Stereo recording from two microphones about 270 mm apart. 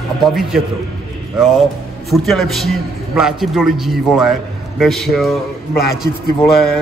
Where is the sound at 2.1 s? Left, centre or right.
Centre.